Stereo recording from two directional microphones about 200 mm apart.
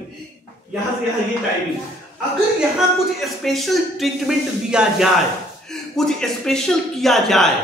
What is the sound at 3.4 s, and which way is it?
Speech, centre (ahead or behind).